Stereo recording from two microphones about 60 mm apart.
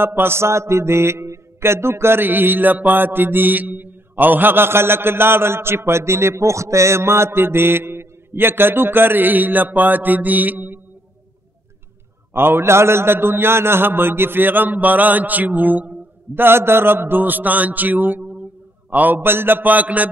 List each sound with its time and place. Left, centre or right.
0.0 s mantra: right
12.4 s mantra: right
16.3 s mantra: right